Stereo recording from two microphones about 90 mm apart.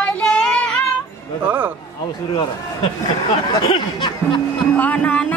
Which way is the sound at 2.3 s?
65° left (ahead or behind).